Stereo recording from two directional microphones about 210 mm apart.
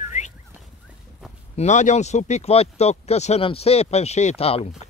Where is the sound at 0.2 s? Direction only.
35° left (ahead or behind).